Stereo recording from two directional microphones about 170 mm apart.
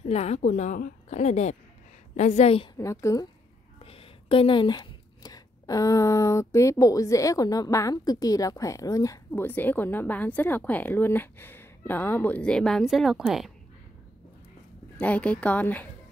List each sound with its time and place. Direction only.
0.0 s a woman's voice: 40° left (ahead or behind)
2.8 s a woman's voice: 20° left (ahead or behind)
3.8 s a woman's voice: 35° left (ahead or behind); by 13.5 s centre (ahead or behind)
15.0 s a woman's voice: 10° left (ahead or behind)